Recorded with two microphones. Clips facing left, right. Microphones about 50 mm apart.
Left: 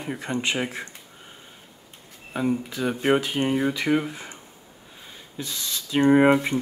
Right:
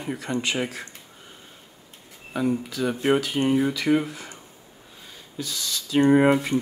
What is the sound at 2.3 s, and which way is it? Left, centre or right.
Speech, centre.